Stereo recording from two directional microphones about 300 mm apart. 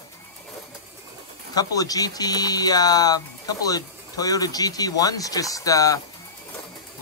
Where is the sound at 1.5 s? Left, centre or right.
Centre.